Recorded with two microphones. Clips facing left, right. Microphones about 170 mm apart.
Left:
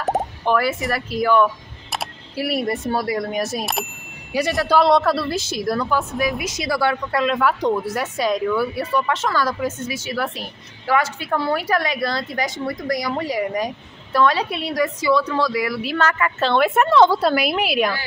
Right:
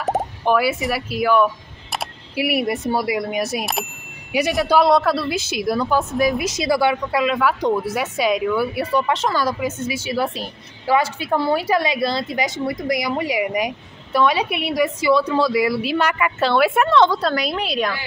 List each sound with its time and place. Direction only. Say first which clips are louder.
0.0 s speech: right 1 dB; 5° right (ahead or behind)
4.3 s speech: right 1 dB; 15° right (ahead or behind)
4.6 s speech: even; 5° right (ahead or behind)
5.9 s a woman's voice: right 3 dB; 20° right (ahead or behind)
8.9 s a woman's voice: right 1 dB; 20° right (ahead or behind)
9.9 s a woman's voice: right 3 dB; 30° right (ahead or behind)
11.2 s a woman's voice: right 2 dB; 10° right (ahead or behind)
15.5 s a woman's voice: right 4 dB; 25° right (ahead or behind)
15.9 s a woman's voice: right 1 dB; 15° right (ahead or behind)
16.8 s a woman's voice: left 1 dB; 5° left (ahead or behind)